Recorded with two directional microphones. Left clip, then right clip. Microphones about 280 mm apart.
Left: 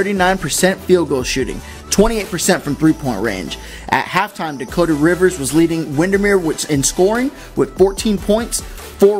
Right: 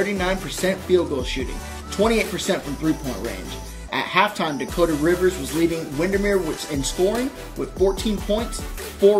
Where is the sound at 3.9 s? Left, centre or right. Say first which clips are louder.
Left 4 dB; left.